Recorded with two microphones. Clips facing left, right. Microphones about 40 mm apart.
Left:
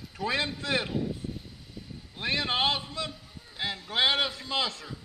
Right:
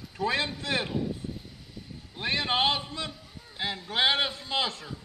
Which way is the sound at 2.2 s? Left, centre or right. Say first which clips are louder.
Right 1 dB; right.